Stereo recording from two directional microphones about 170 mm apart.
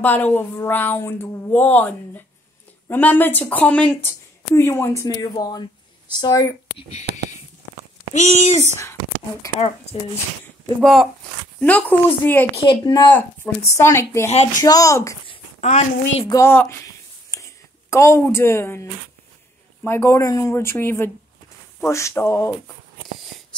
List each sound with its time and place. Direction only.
0.0 s speech: 10° left (ahead or behind)
7.1 s speech: 70° right (ahead or behind)
8.1 s speech: 45° left (ahead or behind)
9.9 s speech: 30° left (ahead or behind)
10.8 s speech: centre (ahead or behind)
12.6 s speech: 25° left (ahead or behind)
13.1 s speech: 15° left (ahead or behind)
14.3 s speech: 40° left (ahead or behind)
14.6 s speech: 20° left (ahead or behind)
15.2 s a sound: 40° left (ahead or behind)
16.3 s speech: 15° left (ahead or behind)